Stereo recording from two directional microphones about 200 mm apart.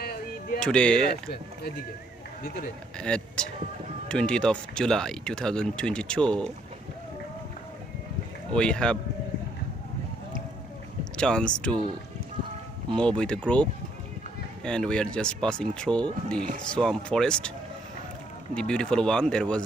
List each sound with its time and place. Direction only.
0.0 s a sound: 50° left (ahead or behind)
0.6 s speech: 5° left (ahead or behind)
3.0 s speech: 5° left (ahead or behind)
8.5 s speech: 5° left (ahead or behind)
11.1 s speech: 5° left (ahead or behind)
12.9 s speech: 5° left (ahead or behind)
18.5 s speech: 5° left (ahead or behind)